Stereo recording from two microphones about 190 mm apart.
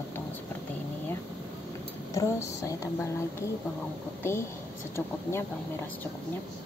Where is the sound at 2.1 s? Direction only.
15° left (ahead or behind).